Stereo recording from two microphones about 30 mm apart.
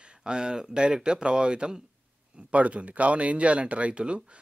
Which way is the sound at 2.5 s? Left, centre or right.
Right.